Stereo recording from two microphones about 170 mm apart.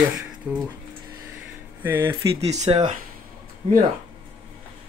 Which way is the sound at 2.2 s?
40° right (ahead or behind).